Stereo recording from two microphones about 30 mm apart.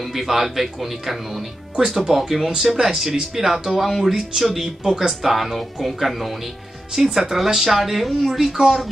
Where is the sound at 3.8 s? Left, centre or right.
Centre.